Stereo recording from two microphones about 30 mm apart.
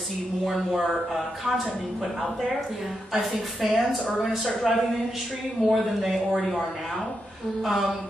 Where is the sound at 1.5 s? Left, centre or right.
Right.